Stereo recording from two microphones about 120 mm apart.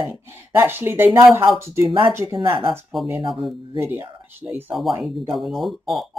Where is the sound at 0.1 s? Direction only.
20° right (ahead or behind).